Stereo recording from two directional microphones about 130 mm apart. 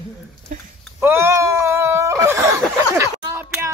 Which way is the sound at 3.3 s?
20° right (ahead or behind).